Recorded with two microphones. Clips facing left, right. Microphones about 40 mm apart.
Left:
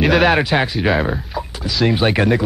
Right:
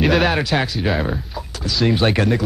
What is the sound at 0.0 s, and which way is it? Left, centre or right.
Speech, centre.